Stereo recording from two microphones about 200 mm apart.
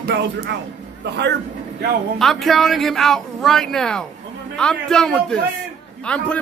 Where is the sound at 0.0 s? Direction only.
55° right (ahead or behind).